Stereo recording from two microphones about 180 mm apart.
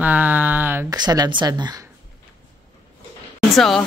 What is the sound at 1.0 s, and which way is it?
Speech, 25° right (ahead or behind).